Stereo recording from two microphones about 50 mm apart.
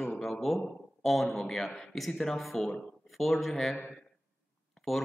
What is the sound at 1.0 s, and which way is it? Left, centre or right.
Speech, centre.